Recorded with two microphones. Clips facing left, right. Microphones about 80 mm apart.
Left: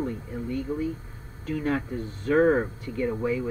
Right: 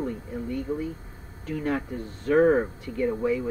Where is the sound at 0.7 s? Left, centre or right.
Centre.